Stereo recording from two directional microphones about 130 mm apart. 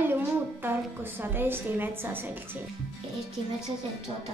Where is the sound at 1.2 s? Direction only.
15° right (ahead or behind).